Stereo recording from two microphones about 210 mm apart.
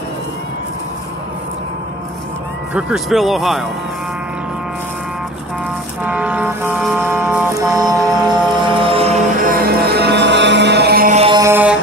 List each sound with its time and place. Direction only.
2.7 s speech: centre (ahead or behind)
6.0 s music: 5° right (ahead or behind)
8.8 s music: 30° right (ahead or behind); by 11.1 s 45° right (ahead or behind)
11.1 s music: 25° right (ahead or behind)
11.4 s music: 10° right (ahead or behind)